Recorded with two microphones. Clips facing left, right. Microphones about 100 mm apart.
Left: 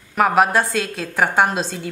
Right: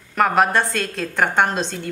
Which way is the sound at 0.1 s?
5° left (ahead or behind).